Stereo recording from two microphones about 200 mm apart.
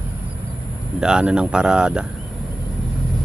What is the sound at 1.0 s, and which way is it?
Speech, 5° right (ahead or behind).